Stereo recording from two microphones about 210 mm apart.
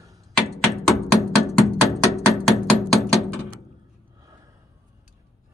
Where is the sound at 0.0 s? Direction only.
15° right (ahead or behind).